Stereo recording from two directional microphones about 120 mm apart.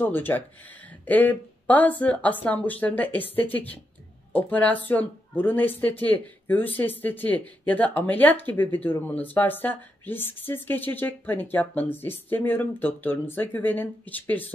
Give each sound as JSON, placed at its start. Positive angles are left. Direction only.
{"t": 0.0, "sound": "speech", "side_deg": 15}